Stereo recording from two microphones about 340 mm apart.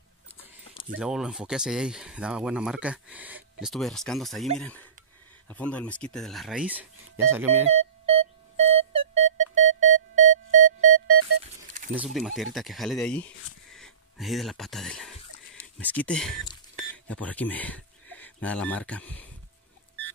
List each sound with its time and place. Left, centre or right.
0.9 s speech: centre
7.6 s music: centre
11.4 s a sound: right
11.9 s speech: centre